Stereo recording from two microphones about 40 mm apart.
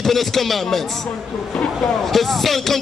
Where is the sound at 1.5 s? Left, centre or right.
Left.